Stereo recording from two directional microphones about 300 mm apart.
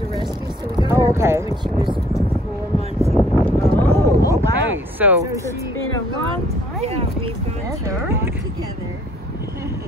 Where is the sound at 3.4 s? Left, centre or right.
Centre.